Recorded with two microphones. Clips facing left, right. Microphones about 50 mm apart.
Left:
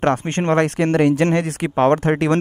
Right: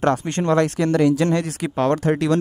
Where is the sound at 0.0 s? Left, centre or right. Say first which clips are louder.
Left 1 dB; left.